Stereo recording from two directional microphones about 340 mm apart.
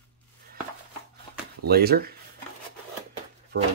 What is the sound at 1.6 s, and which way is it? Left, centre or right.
Speech, right.